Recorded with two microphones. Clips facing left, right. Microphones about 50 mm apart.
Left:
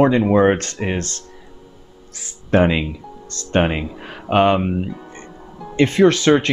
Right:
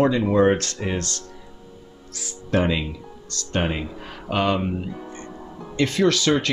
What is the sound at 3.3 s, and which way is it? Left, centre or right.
Speech, left.